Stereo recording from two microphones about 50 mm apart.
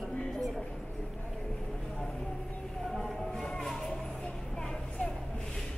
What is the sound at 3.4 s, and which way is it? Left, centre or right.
Music, centre.